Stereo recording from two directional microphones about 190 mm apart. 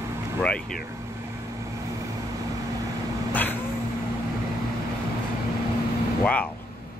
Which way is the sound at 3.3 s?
10° left (ahead or behind).